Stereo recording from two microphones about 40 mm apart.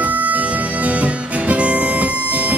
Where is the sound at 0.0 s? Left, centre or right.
Right.